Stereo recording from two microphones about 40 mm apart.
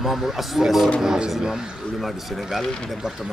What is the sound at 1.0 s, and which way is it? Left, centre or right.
Speech, centre.